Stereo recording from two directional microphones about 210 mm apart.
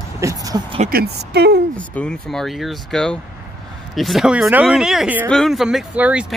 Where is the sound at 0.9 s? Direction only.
50° right (ahead or behind).